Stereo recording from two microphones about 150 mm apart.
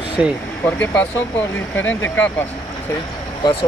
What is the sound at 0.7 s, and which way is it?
Speech, 10° left (ahead or behind).